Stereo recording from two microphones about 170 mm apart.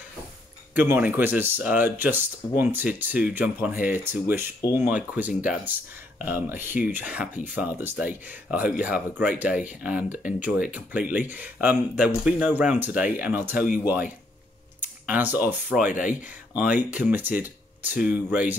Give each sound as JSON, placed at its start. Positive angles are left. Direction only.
{"t": 0.7, "sound": "speech", "side_deg": -10}